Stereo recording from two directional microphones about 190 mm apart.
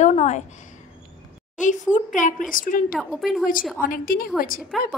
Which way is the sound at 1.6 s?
40° left (ahead or behind).